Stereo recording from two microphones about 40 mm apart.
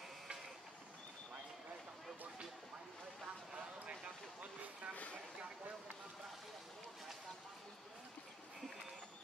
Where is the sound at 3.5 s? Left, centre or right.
Right.